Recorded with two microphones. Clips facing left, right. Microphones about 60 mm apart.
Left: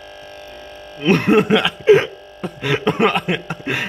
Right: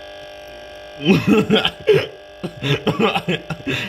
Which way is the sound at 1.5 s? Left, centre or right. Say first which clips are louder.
Left 3 dB; centre.